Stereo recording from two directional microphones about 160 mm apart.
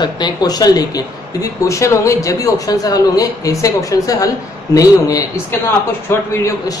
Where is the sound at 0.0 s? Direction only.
25° left (ahead or behind).